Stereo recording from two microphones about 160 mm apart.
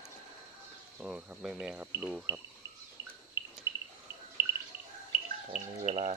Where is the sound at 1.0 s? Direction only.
5° right (ahead or behind).